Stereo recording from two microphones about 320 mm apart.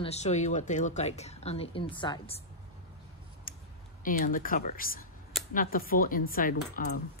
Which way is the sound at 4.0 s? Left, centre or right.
Left.